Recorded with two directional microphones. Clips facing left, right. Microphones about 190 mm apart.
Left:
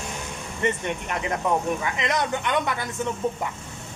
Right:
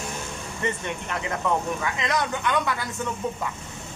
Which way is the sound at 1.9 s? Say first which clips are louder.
Left 1 dB; 20° left (ahead or behind).